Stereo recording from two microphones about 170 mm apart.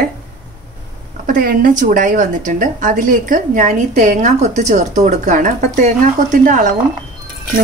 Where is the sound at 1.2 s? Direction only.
55° right (ahead or behind).